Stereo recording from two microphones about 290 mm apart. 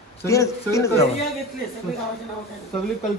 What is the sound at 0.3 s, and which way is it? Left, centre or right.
Speech, centre.